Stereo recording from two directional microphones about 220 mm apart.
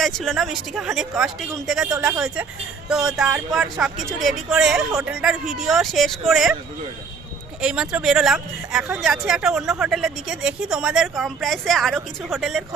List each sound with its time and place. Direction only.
0.0 s speech: centre (ahead or behind)
7.6 s speech: 5° right (ahead or behind)